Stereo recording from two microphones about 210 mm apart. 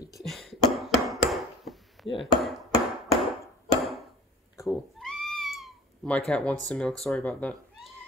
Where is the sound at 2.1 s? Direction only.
Centre (ahead or behind).